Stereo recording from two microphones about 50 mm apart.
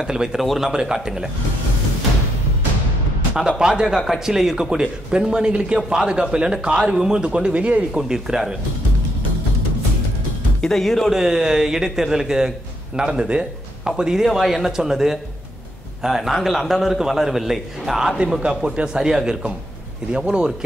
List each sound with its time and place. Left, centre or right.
0.0 s a man's voice: centre
3.3 s a man's voice: centre
7.9 s a man's voice: centre
10.6 s speech: centre
11.1 s a man's voice: centre